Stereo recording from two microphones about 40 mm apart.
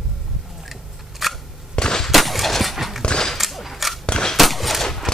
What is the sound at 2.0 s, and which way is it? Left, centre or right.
Gunshot, centre.